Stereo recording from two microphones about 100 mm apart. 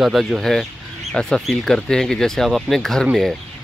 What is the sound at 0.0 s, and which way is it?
Speech, centre (ahead or behind).